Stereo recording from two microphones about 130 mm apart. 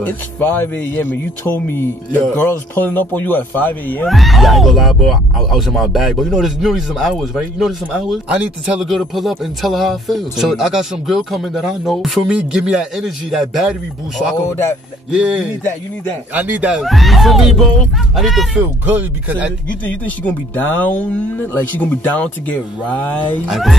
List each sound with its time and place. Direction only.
0.0 s speech: 15° left (ahead or behind)
4.1 s speech: centre (ahead or behind)
15.0 s speech: 5° right (ahead or behind)
18.9 s speech: 15° right (ahead or behind)
19.9 s speech: 15° left (ahead or behind)
23.5 s speech: centre (ahead or behind)